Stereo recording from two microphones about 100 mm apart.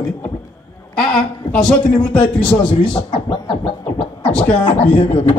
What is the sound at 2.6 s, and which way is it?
Speech, 50° left (ahead or behind).